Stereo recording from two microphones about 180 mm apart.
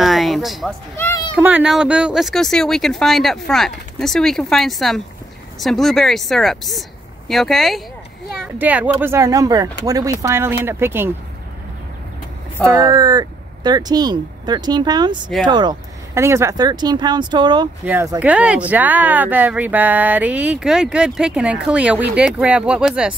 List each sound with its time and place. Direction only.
0.0 s a sound: centre (ahead or behind)
1.3 s speech: 5° right (ahead or behind)
12.6 s speech: 20° right (ahead or behind)
17.8 s speech: 15° right (ahead or behind)